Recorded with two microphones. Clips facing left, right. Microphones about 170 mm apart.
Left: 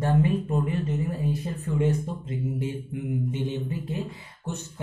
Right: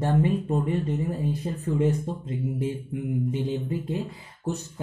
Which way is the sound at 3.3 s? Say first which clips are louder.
Right 2 dB; 35° right (ahead or behind).